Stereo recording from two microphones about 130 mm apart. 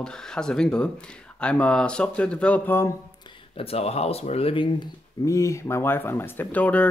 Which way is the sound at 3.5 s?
50° left (ahead or behind).